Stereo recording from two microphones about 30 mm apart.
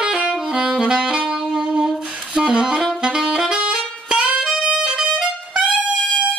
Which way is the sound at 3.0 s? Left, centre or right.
Right.